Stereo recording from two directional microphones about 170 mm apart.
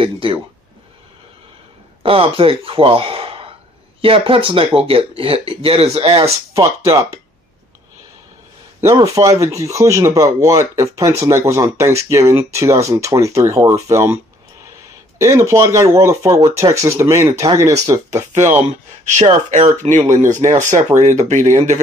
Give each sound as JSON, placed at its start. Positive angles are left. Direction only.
{"t": 0.0, "sound": "speech", "side_deg": -30}
{"t": 2.0, "sound": "speech", "side_deg": -35}
{"t": 6.5, "sound": "speech", "side_deg": -20}
{"t": 8.8, "sound": "speech", "side_deg": -20}
{"t": 15.2, "sound": "speech", "side_deg": -15}
{"t": 18.7, "sound": "speech", "side_deg": -45}